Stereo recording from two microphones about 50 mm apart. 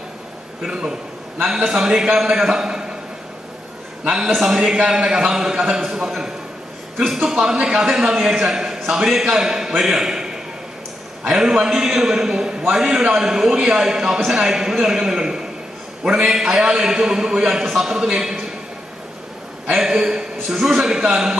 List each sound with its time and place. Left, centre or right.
0.7 s a man's voice: centre
4.0 s a man's voice: centre
11.3 s a man's voice: centre
19.8 s a man's voice: centre